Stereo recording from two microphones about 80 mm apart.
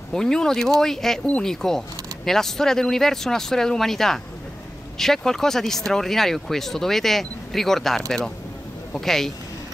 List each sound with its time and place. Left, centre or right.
0.1 s speech: centre